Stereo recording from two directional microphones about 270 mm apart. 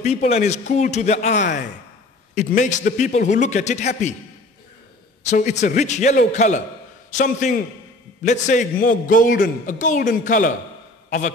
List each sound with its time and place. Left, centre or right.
0.0 s a man's voice: left
5.3 s a man's voice: left